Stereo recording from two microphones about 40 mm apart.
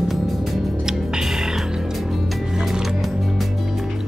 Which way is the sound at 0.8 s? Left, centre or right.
Centre.